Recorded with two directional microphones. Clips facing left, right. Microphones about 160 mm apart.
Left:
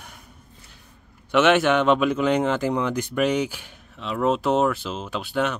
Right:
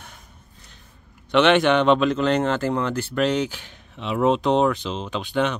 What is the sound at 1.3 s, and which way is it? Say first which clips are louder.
Speech: right 1 dB; 5° left (ahead or behind).